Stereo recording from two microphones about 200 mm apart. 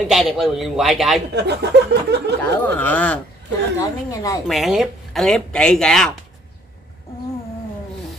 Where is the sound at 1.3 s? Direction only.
55° right (ahead or behind).